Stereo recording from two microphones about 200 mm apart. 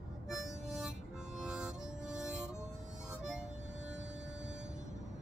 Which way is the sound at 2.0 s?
35° right (ahead or behind).